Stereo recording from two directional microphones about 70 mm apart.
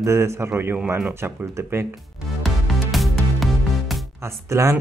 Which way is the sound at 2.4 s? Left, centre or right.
Centre.